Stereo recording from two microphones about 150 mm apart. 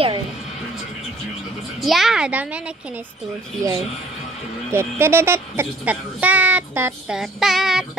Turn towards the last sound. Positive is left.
turn(degrees=-5)  # may be behind; listen again after turning